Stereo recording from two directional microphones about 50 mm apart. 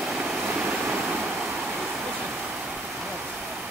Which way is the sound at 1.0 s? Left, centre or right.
Right.